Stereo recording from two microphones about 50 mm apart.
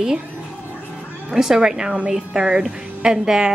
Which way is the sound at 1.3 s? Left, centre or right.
Centre.